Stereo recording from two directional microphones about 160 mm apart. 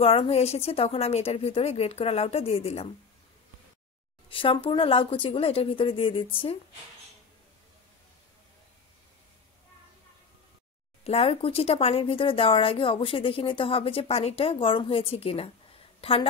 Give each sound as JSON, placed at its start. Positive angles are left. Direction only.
{"t": 0.0, "sound": "a woman's voice", "side_deg": 35}
{"t": 4.3, "sound": "a woman's voice", "side_deg": 35}
{"t": 11.1, "sound": "a woman's voice", "side_deg": 40}